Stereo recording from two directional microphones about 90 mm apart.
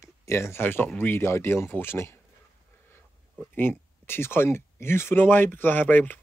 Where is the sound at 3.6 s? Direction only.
25° left (ahead or behind).